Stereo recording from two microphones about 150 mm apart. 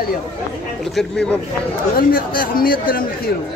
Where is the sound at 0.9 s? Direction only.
5° left (ahead or behind).